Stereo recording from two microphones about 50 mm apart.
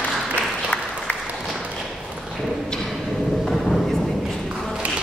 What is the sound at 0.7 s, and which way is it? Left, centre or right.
Applause, left.